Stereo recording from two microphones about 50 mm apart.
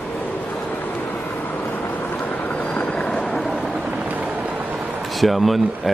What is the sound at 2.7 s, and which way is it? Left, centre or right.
Vehicle, left.